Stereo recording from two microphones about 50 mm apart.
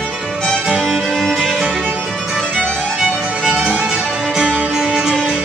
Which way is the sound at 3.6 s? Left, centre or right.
Centre.